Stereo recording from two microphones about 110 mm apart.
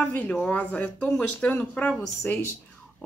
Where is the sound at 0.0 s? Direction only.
15° left (ahead or behind).